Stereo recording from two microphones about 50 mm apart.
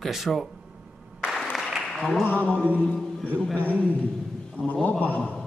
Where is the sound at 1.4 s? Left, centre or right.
Centre.